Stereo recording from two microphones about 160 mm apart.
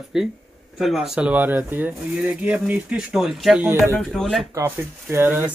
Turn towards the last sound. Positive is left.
turn(degrees=-15)  # may be behind; listen again after turning